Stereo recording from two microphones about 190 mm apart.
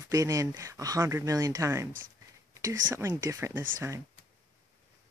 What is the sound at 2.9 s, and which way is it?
Speech, 15° right (ahead or behind).